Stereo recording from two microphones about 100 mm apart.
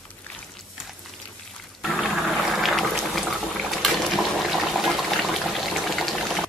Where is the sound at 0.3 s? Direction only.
15° left (ahead or behind).